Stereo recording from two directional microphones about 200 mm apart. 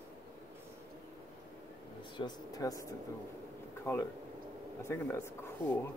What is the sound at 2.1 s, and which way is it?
Speech, 20° left (ahead or behind).